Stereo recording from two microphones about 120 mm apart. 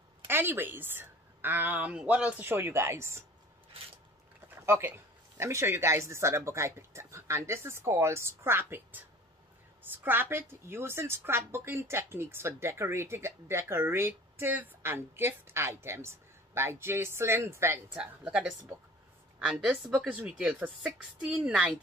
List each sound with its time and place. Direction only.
0.3 s a woman's voice: 20° right (ahead or behind)
4.6 s a woman's voice: 20° right (ahead or behind)
10.0 s a woman's voice: 20° right (ahead or behind)
17.9 s a woman's voice: 10° right (ahead or behind)